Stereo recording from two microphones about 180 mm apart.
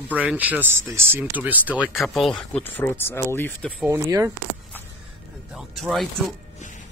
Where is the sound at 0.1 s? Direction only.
10° right (ahead or behind); by 3.7 s 10° left (ahead or behind).